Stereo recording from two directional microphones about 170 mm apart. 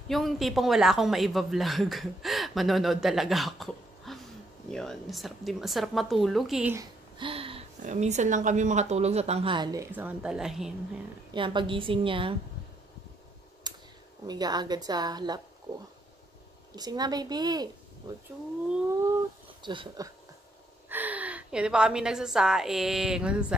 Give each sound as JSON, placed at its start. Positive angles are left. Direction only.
{"t": 0.1, "sound": "speech", "side_deg": 0}
{"t": 7.2, "sound": "gasp", "side_deg": -30}
{"t": 7.8, "sound": "speech", "side_deg": -45}
{"t": 9.9, "sound": "speech", "side_deg": -5}
{"t": 11.3, "sound": "speech", "side_deg": -30}
{"t": 13.7, "sound": "a sound", "side_deg": -25}
{"t": 14.2, "sound": "a woman's voice", "side_deg": -25}
{"t": 16.7, "sound": "a woman's voice", "side_deg": -25}
{"t": 19.6, "sound": "a woman's voice", "side_deg": -30}
{"t": 20.9, "sound": "a woman's voice", "side_deg": -10}